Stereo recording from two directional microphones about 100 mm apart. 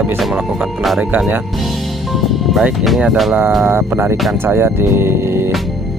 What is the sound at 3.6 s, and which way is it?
Speech, 25° right (ahead or behind).